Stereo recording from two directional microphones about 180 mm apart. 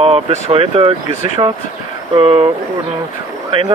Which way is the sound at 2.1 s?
30° right (ahead or behind).